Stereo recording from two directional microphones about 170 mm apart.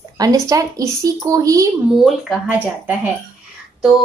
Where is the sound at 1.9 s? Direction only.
Centre (ahead or behind).